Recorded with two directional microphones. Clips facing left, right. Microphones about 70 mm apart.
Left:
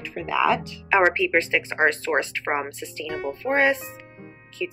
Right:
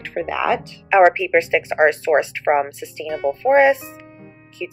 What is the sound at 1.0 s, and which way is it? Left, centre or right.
Speech, centre.